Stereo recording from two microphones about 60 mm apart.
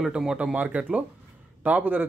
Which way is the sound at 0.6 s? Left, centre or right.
Right.